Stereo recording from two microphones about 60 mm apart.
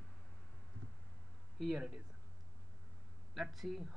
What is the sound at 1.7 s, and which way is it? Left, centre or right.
Speech, centre.